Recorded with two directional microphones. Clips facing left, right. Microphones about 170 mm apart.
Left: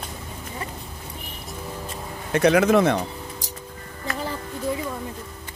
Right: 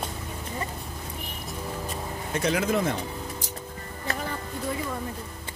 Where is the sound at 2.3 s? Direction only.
70° left (ahead or behind).